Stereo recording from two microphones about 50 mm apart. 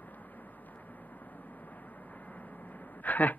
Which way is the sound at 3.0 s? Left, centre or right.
Left.